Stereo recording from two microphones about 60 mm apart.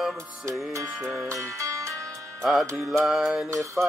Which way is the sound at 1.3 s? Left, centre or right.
Right.